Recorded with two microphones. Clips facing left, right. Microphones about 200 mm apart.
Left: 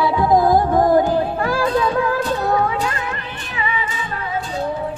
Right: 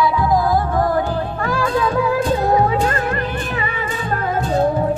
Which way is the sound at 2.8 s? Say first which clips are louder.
Right 6 dB; 55° right (ahead or behind).